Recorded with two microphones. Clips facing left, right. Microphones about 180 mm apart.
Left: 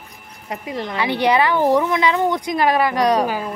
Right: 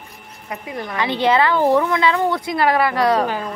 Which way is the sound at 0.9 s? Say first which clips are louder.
Even; 15° left (ahead or behind).